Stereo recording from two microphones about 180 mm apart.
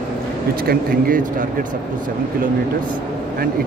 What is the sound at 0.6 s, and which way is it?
Speech, 55° right (ahead or behind).